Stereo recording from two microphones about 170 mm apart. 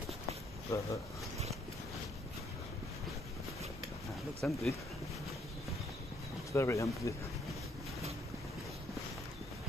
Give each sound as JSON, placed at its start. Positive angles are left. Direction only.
{"t": 0.7, "sound": "speech", "side_deg": 15}
{"t": 4.4, "sound": "speech", "side_deg": 0}
{"t": 6.5, "sound": "speech", "side_deg": 15}